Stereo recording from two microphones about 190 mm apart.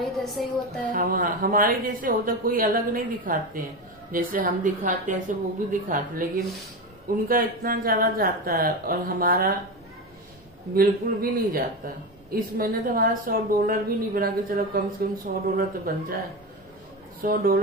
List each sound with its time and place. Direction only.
0.0 s music: centre (ahead or behind)
0.9 s speech: 50° right (ahead or behind)
7.2 s speech: 50° right (ahead or behind)
10.7 s speech: 50° right (ahead or behind)
17.2 s speech: 50° right (ahead or behind)